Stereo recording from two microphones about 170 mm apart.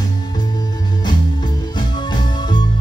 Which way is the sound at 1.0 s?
25° left (ahead or behind).